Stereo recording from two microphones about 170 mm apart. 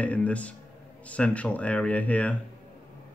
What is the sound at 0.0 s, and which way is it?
Speech, 10° left (ahead or behind).